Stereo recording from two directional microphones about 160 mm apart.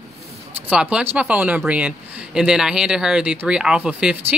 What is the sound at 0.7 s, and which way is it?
Speech, 5° right (ahead or behind).